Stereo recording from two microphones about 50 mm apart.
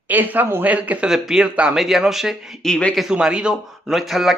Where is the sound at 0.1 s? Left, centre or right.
Right.